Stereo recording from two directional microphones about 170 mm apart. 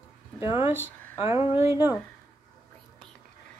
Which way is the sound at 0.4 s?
15° right (ahead or behind).